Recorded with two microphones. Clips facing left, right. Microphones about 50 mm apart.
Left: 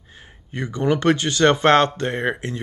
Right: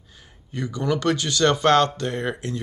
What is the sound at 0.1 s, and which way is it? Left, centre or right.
Speech, left.